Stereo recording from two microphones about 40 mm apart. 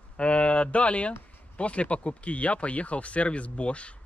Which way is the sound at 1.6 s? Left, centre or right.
Left.